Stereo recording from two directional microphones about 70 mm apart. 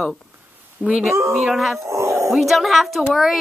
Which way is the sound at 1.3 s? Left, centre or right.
Centre.